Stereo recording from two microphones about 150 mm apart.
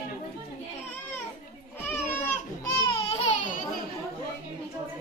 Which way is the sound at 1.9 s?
15° left (ahead or behind).